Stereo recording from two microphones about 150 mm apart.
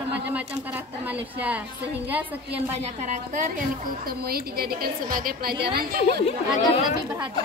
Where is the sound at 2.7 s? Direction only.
50° right (ahead or behind).